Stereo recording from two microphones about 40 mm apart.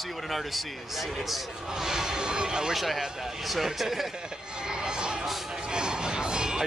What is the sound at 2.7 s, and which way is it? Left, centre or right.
Speech, centre.